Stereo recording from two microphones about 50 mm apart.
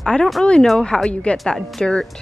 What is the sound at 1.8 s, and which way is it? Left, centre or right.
Speech, centre.